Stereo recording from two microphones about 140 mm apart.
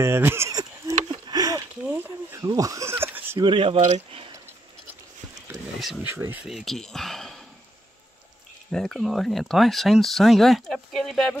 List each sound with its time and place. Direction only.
0.0 s speech: 15° right (ahead or behind)
1.0 s a sound: 30° right (ahead or behind); by 3.3 s 15° right (ahead or behind)
3.3 s speech: 35° right (ahead or behind)
3.8 s speech: 55° right (ahead or behind)
5.5 s a sound: centre (ahead or behind)
6.0 s speech: 15° right (ahead or behind)
6.4 s speech: centre (ahead or behind)
8.7 s speech: 5° left (ahead or behind)